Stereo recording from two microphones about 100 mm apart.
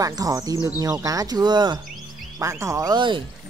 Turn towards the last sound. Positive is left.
turn(degrees=-50)  # may be behind; listen again after turning